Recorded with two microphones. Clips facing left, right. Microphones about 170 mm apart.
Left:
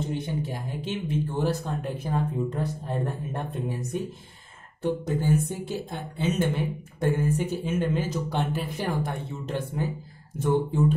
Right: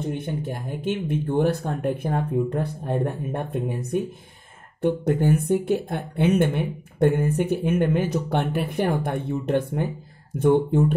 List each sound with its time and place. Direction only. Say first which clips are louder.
0.1 s speech: right 2 dB; 55° right (ahead or behind)